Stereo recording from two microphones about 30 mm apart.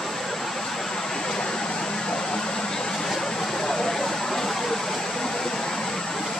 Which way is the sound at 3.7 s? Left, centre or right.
Centre.